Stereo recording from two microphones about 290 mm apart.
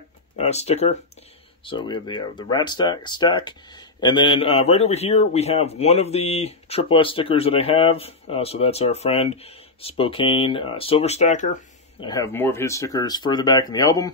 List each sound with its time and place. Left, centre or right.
0.4 s speech: left
12.1 s speech: centre